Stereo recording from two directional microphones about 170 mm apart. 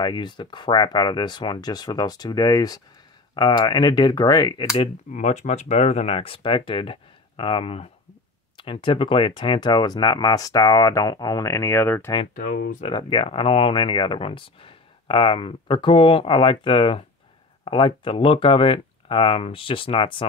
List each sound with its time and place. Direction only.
0.0 s speech: 25° left (ahead or behind)
5.1 s speech: 45° left (ahead or behind); by 12.1 s 15° left (ahead or behind)
12.4 s speech: 55° left (ahead or behind)
12.8 s speech: 30° left (ahead or behind)